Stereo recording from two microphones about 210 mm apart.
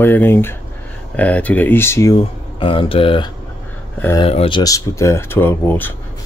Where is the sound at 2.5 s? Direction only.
25° left (ahead or behind); by 5.9 s 10° left (ahead or behind).